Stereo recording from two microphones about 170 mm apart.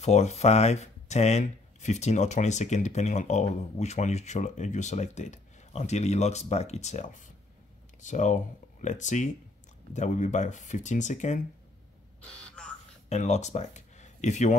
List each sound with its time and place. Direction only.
0.0 s speech: 40° left (ahead or behind)
12.6 s a sound: 5° left (ahead or behind)
13.1 s speech: 40° left (ahead or behind)